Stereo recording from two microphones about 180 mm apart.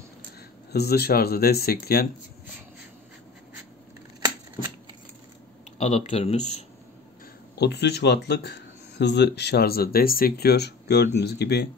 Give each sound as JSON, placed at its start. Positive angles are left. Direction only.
{"t": 0.7, "sound": "speech", "side_deg": 60}
{"t": 5.8, "sound": "speech", "side_deg": 35}
{"t": 7.5, "sound": "speech", "side_deg": 70}